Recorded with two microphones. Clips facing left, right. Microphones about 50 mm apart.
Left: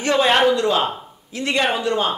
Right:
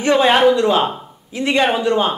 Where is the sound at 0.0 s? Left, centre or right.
Centre.